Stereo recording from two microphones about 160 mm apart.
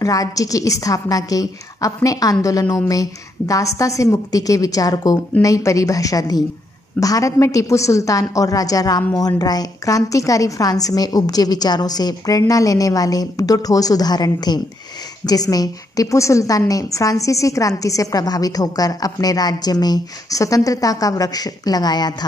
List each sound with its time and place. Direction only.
0.0 s a woman's voice: 20° left (ahead or behind)